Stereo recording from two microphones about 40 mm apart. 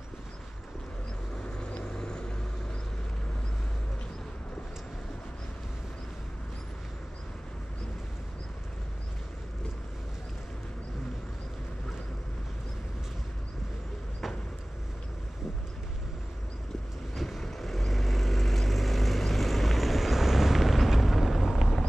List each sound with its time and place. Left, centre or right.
1.3 s vehicle: left
17.2 s vehicle: centre